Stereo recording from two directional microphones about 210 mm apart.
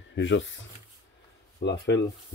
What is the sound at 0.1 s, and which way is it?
Speech, 60° left (ahead or behind).